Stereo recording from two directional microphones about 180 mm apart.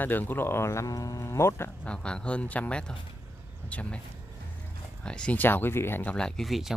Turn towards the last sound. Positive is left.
turn(degrees=0)  # may be behind; listen again after turning